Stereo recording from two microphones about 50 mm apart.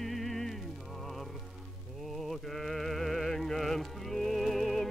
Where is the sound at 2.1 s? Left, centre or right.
Centre.